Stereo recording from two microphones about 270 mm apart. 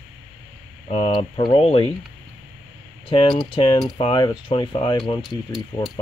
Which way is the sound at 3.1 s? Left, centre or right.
Centre.